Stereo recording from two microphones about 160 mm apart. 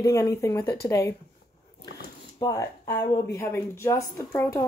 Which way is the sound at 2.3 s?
25° left (ahead or behind).